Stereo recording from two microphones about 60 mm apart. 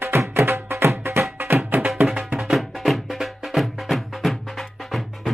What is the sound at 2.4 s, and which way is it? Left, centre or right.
Music, centre.